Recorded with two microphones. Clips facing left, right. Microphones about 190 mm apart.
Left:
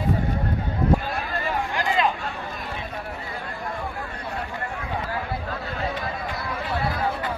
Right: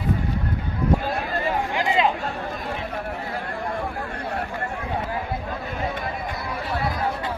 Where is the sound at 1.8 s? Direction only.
20° right (ahead or behind).